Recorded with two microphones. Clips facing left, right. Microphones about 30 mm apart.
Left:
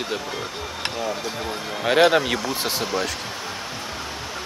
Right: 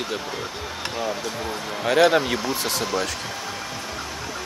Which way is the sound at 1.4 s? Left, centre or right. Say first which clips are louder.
Left 1 dB; left.